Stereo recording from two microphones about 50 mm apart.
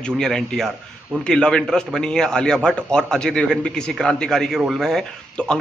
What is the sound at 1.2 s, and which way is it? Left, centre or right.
A man's voice, centre.